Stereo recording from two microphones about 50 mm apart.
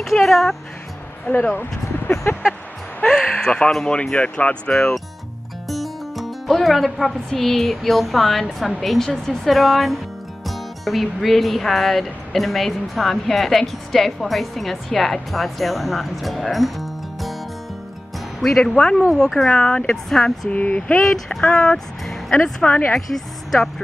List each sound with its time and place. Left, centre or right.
0.0 s music: centre
1.2 s speech: left
1.6 s speech: left
3.1 s speech: centre
5.7 s speech: centre
18.4 s speech: centre
19.5 s speech: centre
20.1 s speech: centre
20.4 s speech: left
21.0 s speech: centre
22.9 s a woman's voice: centre